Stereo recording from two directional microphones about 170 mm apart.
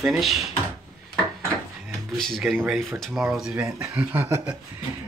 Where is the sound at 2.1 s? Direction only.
Centre (ahead or behind).